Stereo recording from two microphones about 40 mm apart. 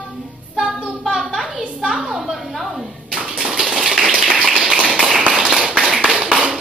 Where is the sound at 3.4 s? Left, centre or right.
Right.